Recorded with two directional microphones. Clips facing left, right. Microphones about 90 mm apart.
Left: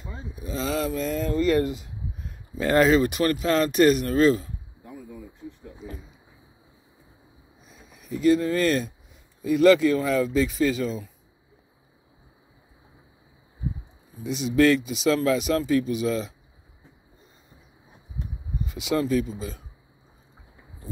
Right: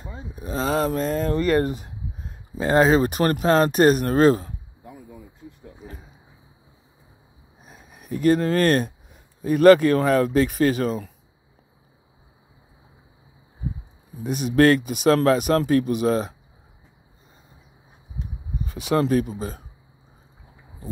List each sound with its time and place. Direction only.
0.3 s speech: 45° right (ahead or behind)
2.1 s speech: 35° right (ahead or behind)
7.6 s speech: 50° right (ahead or behind)
14.2 s speech: 50° right (ahead or behind)
18.7 s speech: 55° right (ahead or behind)